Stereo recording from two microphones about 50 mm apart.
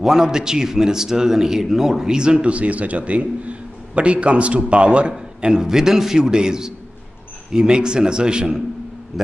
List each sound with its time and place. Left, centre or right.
0.0 s a man's voice: centre